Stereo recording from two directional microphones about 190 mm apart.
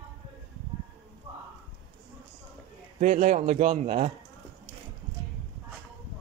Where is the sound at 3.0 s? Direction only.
40° right (ahead or behind).